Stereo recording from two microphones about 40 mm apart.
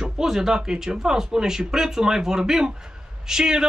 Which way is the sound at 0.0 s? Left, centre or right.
Centre.